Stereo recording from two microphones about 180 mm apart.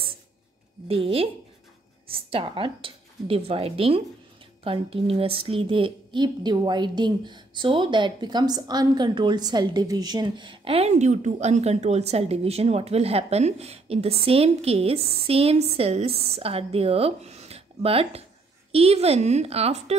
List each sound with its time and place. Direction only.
0.8 s a woman's voice: 30° right (ahead or behind)